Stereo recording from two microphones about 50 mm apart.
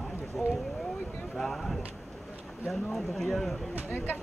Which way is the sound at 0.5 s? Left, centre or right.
Centre.